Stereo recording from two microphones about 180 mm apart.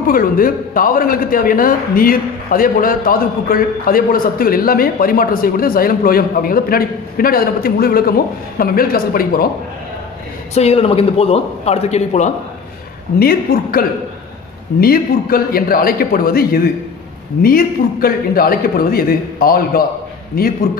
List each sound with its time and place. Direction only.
0.0 s a man's voice: 50° left (ahead or behind)
10.5 s a man's voice: 35° left (ahead or behind)
13.2 s a man's voice: 55° left (ahead or behind)